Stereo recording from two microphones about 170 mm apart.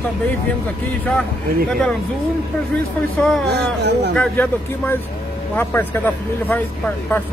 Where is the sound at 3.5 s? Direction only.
75° right (ahead or behind).